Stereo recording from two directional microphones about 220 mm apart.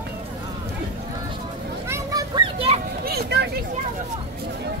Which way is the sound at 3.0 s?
45° right (ahead or behind).